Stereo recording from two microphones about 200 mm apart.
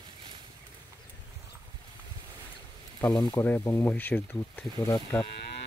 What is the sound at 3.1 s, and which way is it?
Speech, 20° left (ahead or behind).